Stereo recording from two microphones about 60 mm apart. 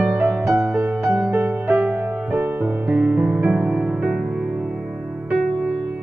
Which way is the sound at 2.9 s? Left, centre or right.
Right.